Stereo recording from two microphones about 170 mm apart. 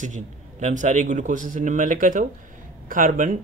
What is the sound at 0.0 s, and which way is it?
Speech, 45° right (ahead or behind).